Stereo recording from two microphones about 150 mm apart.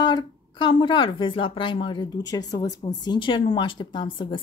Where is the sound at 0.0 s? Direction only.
30° left (ahead or behind).